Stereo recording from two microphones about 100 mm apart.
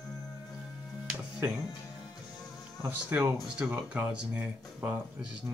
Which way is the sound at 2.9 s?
20° right (ahead or behind).